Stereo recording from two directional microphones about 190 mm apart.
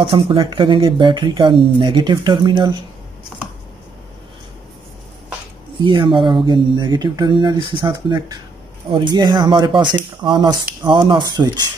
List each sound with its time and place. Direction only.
0.0 s speech: 25° right (ahead or behind)
5.8 s speech: 25° right (ahead or behind)